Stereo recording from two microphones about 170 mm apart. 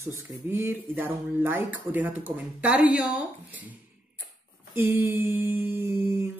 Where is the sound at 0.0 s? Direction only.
15° right (ahead or behind).